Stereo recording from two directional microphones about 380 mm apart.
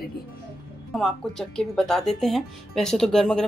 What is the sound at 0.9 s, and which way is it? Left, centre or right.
Speech, centre.